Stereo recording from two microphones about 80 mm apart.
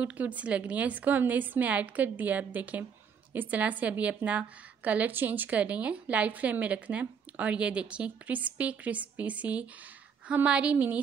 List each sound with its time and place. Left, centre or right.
0.0 s a woman's voice: centre